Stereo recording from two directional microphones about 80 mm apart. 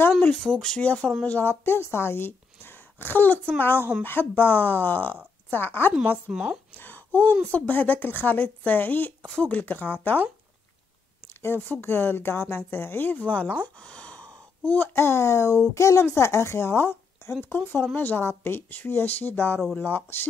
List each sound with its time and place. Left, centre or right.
0.4 s a woman's voice: centre; by 5.9 s left
6.3 s speech: centre
6.8 s a sound: left
7.5 s a woman's voice: centre
11.4 s a woman's voice: left
13.7 s a sound: centre
14.7 s a woman's voice: left